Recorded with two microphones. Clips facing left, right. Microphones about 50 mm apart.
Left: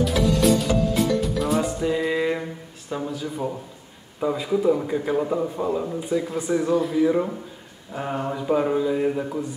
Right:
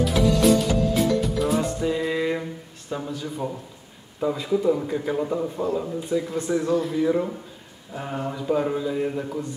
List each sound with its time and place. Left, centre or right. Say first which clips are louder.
0.0 s music: even; centre
2.9 s a man's voice: left 2 dB; centre